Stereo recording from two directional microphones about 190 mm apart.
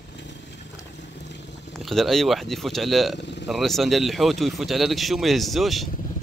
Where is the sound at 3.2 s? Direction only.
65° left (ahead or behind).